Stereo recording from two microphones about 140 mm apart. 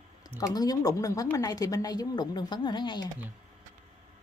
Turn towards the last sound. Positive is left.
turn(degrees=30)  # may be behind; listen again after turning